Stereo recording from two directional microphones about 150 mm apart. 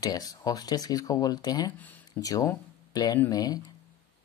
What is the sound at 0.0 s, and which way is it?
Speech, 25° left (ahead or behind).